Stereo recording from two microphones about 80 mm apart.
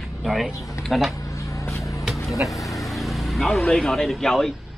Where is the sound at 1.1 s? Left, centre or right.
Left.